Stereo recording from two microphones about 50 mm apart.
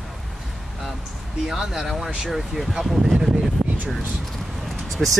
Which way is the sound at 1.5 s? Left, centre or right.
Centre.